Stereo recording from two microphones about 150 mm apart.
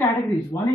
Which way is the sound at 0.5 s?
25° left (ahead or behind).